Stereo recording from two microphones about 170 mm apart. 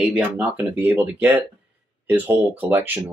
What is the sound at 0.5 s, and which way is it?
Speech, 15° right (ahead or behind).